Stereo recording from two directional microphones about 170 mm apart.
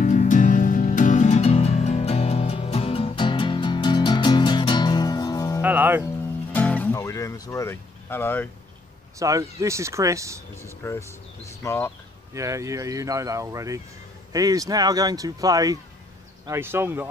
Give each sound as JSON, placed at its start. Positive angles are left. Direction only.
{"t": 0.0, "sound": "music", "side_deg": 50}
{"t": 5.6, "sound": "music", "side_deg": -10}
{"t": 6.5, "sound": "music", "side_deg": 10}
{"t": 9.2, "sound": "speech", "side_deg": -20}
{"t": 10.5, "sound": "speech", "side_deg": 15}
{"t": 12.4, "sound": "speech", "side_deg": -20}